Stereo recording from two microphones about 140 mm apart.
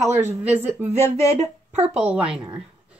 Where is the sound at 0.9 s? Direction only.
50° right (ahead or behind).